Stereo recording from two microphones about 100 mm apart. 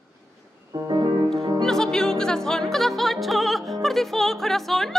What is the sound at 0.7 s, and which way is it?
Music, 45° right (ahead or behind).